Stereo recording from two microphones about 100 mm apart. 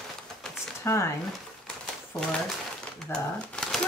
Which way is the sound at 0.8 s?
25° left (ahead or behind).